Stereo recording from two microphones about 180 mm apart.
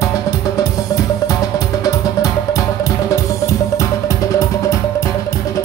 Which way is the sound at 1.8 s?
20° left (ahead or behind).